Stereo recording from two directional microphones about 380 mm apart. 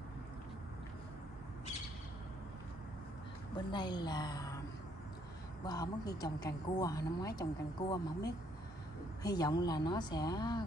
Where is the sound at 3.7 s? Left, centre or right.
Centre.